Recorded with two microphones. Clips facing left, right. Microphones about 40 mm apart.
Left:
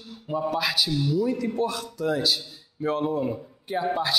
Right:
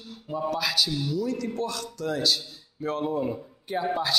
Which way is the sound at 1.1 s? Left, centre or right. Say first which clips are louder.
Left 4 dB; centre.